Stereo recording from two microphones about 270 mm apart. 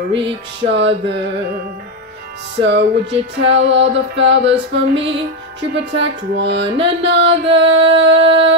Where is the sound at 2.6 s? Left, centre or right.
Right.